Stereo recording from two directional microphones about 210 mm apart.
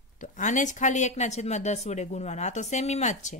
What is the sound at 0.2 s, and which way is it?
Speech, 35° left (ahead or behind).